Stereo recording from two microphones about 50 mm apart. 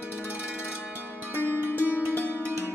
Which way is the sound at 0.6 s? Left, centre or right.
Left.